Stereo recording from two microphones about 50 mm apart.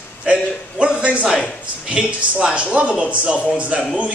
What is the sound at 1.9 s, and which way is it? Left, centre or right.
A man's voice, right.